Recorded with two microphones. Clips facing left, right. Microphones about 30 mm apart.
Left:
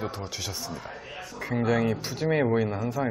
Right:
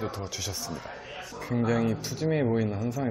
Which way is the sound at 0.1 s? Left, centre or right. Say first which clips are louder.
Even; centre.